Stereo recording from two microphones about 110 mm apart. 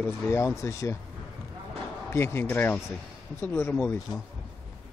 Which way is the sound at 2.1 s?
25° left (ahead or behind).